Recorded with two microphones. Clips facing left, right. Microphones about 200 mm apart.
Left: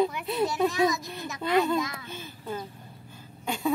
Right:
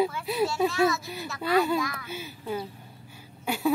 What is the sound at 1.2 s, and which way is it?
Speech, 20° left (ahead or behind).